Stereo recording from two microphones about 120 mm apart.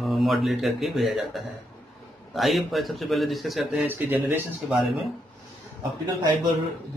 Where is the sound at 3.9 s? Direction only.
15° right (ahead or behind).